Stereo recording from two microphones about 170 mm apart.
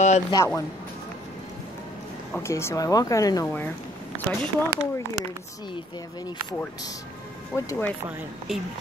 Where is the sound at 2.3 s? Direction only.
15° left (ahead or behind).